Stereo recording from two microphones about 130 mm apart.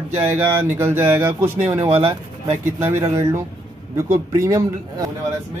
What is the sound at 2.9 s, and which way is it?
Speech, 20° right (ahead or behind).